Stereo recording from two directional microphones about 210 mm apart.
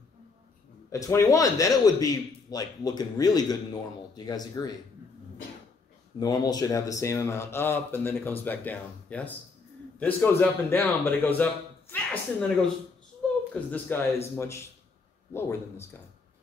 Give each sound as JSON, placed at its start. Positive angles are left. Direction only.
{"t": 0.9, "sound": "a man's voice", "side_deg": 15}
{"t": 6.1, "sound": "a man's voice", "side_deg": 20}